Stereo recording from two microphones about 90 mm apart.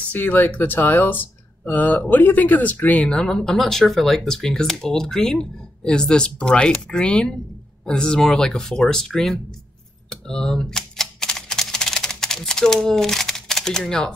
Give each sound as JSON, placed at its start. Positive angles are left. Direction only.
{"t": 0.1, "sound": "speech", "side_deg": 20}
{"t": 10.0, "sound": "typewriter", "side_deg": 5}